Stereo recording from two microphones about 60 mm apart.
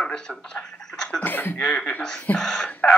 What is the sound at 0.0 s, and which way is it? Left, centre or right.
Speech, centre.